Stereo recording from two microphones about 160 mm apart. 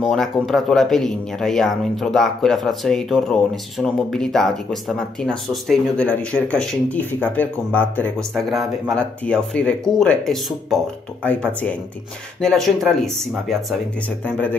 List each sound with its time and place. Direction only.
0.0 s speech: centre (ahead or behind)
8.4 s speech: centre (ahead or behind)